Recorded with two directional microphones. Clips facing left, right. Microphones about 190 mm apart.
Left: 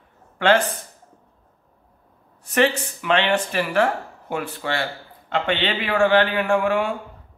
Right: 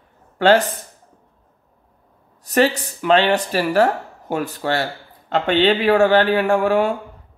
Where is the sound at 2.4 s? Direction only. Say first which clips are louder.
Right 3 dB; 35° right (ahead or behind).